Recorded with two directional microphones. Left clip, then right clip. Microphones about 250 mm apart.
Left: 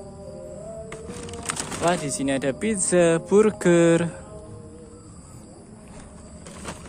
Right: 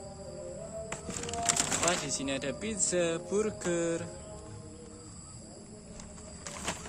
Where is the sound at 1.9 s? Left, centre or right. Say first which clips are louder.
Left 8 dB; left.